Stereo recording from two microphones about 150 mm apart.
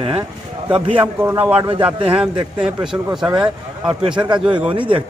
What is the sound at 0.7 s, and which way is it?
Speech, 30° right (ahead or behind).